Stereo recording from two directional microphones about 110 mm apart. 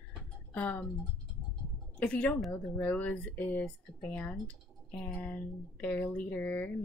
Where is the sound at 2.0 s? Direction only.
10° left (ahead or behind).